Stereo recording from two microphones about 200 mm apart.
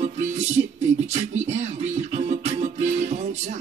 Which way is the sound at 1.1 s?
35° right (ahead or behind).